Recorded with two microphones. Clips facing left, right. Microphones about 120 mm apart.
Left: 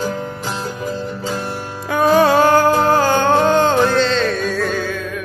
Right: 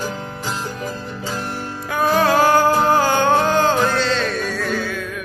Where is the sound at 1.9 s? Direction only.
Centre (ahead or behind).